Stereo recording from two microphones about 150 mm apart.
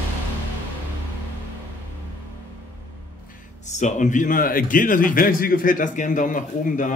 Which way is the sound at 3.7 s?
55° left (ahead or behind).